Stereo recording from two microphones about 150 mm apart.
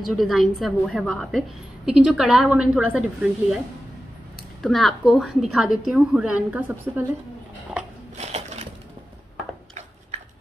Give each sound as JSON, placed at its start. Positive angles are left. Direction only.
{"t": 0.1, "sound": "a woman's voice", "side_deg": 0}
{"t": 8.2, "sound": "sewing machine", "side_deg": -45}